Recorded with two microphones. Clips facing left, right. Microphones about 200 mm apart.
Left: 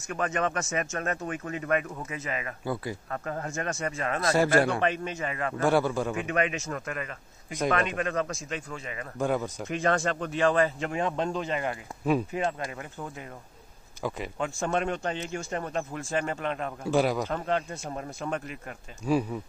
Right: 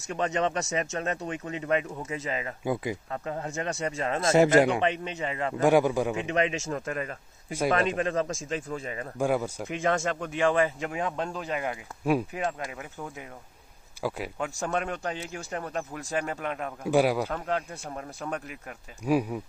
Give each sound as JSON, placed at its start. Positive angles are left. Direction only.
{"t": 0.1, "sound": "speech", "side_deg": -25}
{"t": 6.1, "sound": "speech", "side_deg": -25}
{"t": 9.2, "sound": "speech", "side_deg": -10}